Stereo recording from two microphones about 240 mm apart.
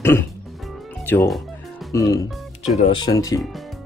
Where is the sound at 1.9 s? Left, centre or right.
Centre.